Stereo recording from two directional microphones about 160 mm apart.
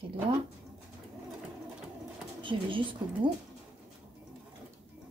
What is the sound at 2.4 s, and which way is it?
Speech, 30° right (ahead or behind).